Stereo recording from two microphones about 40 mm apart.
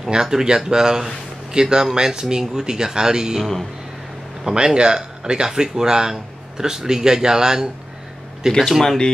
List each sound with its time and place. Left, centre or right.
0.0 s speech: centre
4.5 s speech: centre
8.4 s speech: centre